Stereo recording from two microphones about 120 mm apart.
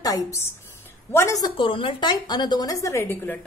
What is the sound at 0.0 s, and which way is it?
A woman's voice, 30° left (ahead or behind).